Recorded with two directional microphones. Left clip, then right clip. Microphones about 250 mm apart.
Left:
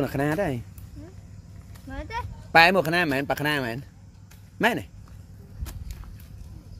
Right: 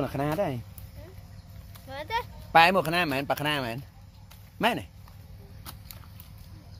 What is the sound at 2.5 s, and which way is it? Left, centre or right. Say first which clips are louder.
Speech: left 3 dB; centre.